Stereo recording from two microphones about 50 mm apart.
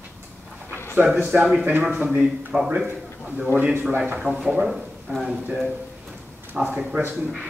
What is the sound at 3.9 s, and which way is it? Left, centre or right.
Speech, right.